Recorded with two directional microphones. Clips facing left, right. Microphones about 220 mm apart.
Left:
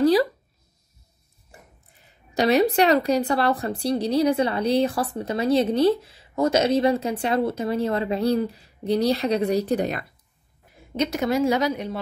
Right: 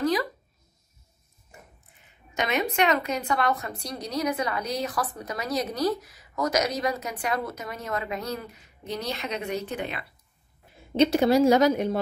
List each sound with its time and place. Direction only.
0.0 s speech: 35° left (ahead or behind)
1.5 s a woman's voice: 35° left (ahead or behind)
11.0 s speech: 30° right (ahead or behind); by 12.0 s 45° right (ahead or behind)